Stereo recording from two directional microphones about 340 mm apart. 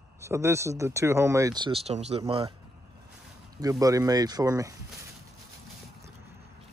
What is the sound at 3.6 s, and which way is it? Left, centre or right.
Speech, centre.